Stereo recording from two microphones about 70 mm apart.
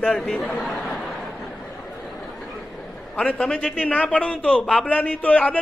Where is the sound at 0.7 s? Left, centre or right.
Centre.